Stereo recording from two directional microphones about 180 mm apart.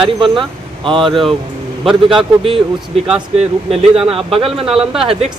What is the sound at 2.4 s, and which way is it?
Speech, 30° right (ahead or behind).